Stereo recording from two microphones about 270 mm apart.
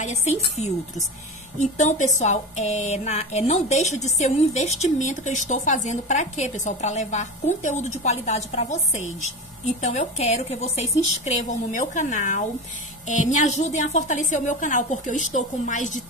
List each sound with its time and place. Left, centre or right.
0.0 s a woman's voice: left